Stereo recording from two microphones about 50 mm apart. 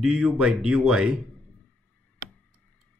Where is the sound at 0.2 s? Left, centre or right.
Centre.